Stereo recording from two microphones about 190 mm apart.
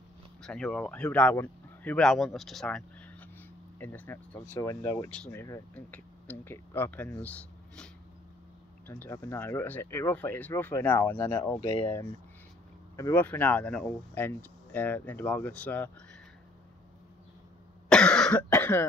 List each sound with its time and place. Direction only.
0.4 s speech: 5° left (ahead or behind)
11.6 s speech: 25° left (ahead or behind)
12.9 s speech: 10° left (ahead or behind)
17.8 s cough: 5° left (ahead or behind)
18.5 s speech: 10° left (ahead or behind)